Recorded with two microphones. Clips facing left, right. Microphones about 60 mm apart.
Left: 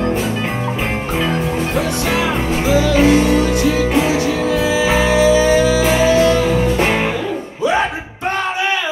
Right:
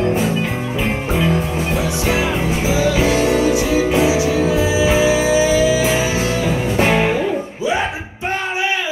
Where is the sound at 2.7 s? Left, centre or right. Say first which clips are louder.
Left 4 dB; left.